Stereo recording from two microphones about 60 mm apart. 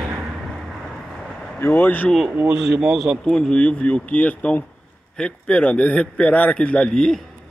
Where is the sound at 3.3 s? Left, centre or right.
Centre.